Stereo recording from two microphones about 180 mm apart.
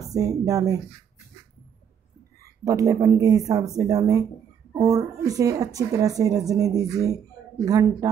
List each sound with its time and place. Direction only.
0.1 s a woman's voice: 20° right (ahead or behind)
2.6 s a woman's voice: 20° right (ahead or behind)